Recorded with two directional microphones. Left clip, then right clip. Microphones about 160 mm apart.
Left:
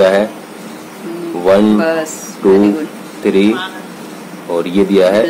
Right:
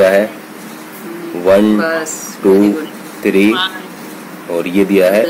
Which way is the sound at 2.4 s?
20° right (ahead or behind).